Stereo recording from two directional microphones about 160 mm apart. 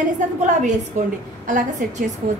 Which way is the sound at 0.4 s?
50° right (ahead or behind).